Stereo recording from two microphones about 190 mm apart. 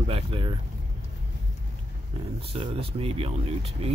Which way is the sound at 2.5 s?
30° right (ahead or behind).